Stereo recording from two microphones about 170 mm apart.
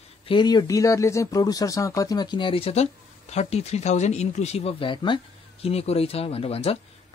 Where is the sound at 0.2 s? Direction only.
30° left (ahead or behind).